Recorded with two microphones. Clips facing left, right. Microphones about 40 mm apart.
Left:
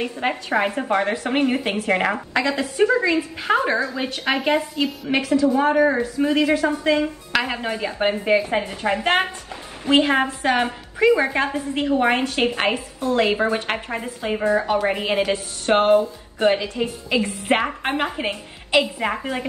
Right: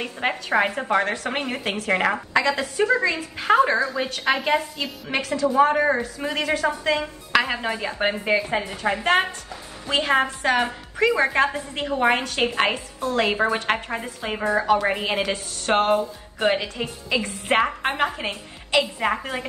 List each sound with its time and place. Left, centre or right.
0.2 s a woman's voice: centre
1.0 s a woman's voice: centre
3.9 s a woman's voice: centre
6.5 s a woman's voice: centre
6.9 s a woman's voice: centre
8.5 s a woman's voice: left
10.0 s a woman's voice: centre
11.1 s a woman's voice: centre
14.3 s a woman's voice: centre
14.6 s a woman's voice: centre
18.9 s a woman's voice: centre